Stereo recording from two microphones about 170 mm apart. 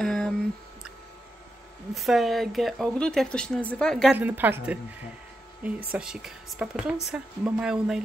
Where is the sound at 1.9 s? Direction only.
Centre (ahead or behind).